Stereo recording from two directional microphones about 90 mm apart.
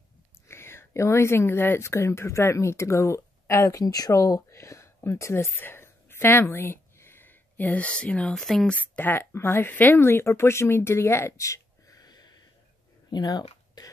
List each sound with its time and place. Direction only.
0.5 s speech: 30° left (ahead or behind); by 8.7 s 5° left (ahead or behind)
8.7 s speech: 20° left (ahead or behind); by 12.4 s 45° left (ahead or behind)
13.1 s a sound: 50° left (ahead or behind)